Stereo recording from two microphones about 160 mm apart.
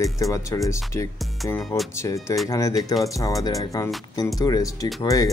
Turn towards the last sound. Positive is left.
turn(degrees=20)  # may be behind; listen again after turning